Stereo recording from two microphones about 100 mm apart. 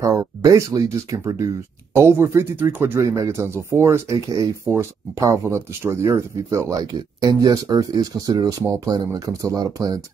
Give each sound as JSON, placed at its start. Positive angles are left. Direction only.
{"t": 0.0, "sound": "speech", "side_deg": -35}